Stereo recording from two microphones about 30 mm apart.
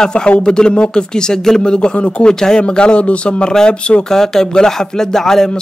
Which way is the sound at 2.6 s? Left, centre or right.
Left.